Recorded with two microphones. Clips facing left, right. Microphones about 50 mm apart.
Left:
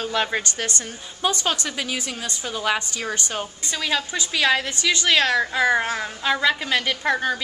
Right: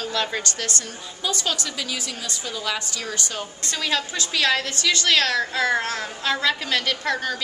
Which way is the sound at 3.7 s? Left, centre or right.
Centre.